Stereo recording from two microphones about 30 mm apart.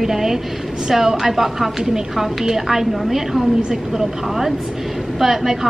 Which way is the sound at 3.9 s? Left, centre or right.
Centre.